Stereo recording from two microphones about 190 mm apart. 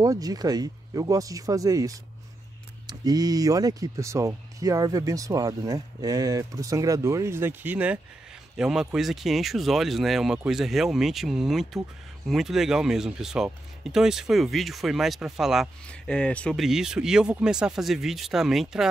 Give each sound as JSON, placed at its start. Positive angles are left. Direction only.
{"t": 0.0, "sound": "speech", "side_deg": -20}